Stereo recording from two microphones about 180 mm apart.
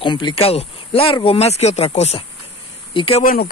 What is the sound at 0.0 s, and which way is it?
Speech, 25° left (ahead or behind).